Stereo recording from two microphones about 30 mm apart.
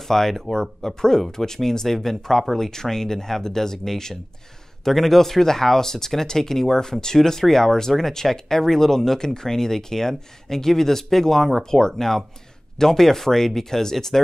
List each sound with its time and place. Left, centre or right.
0.1 s speech: centre